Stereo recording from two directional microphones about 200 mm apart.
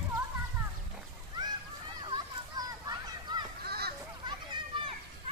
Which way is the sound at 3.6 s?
50° right (ahead or behind).